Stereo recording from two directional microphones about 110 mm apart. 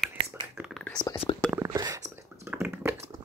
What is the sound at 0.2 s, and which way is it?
Whispering, 60° right (ahead or behind).